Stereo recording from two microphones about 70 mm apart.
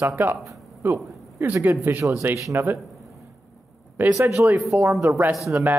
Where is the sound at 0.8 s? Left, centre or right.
Right.